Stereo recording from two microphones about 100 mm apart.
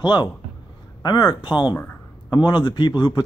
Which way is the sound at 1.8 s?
20° left (ahead or behind).